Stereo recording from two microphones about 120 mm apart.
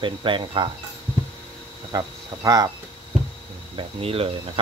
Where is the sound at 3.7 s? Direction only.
50° right (ahead or behind).